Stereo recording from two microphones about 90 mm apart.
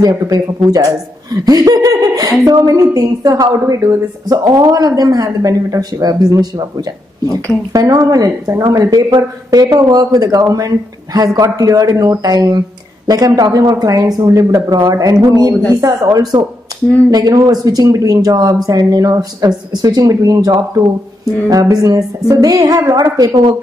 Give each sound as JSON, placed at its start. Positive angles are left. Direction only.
{"t": 0.0, "sound": "a woman's voice", "side_deg": -45}